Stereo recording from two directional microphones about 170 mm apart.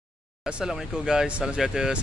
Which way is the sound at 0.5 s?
5° right (ahead or behind).